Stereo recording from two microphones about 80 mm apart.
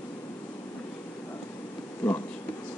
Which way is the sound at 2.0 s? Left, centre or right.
Centre.